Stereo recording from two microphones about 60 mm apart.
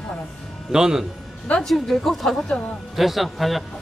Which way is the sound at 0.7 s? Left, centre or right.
Centre.